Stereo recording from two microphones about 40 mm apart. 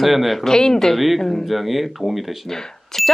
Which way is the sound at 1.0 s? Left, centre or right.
Centre.